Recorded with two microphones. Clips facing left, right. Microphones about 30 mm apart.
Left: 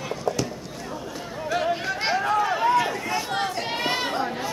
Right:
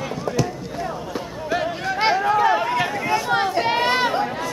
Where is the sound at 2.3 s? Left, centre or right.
Right.